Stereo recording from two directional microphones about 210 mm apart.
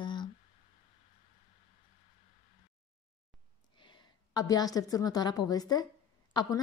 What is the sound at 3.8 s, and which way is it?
A woman's voice, 20° left (ahead or behind).